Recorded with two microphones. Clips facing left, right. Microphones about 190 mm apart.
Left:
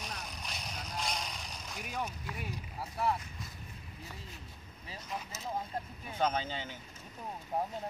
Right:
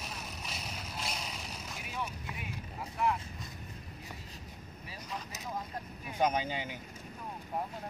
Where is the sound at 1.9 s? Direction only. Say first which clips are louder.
Left 1 dB; 45° left (ahead or behind).